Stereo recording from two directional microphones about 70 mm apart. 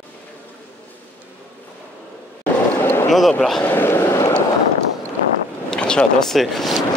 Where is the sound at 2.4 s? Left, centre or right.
Left.